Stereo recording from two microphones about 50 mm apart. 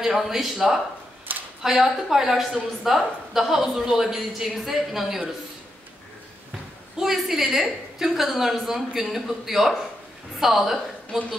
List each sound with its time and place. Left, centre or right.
0.0 s a woman's voice: centre
7.0 s a woman's voice: centre